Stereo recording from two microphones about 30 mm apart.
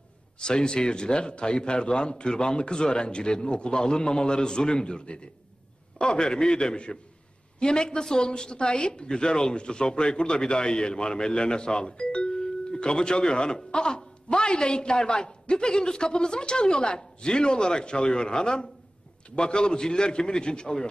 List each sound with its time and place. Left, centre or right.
0.4 s a man's voice: left